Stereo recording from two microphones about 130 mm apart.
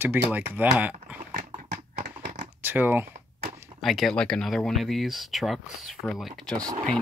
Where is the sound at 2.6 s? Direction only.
15° right (ahead or behind).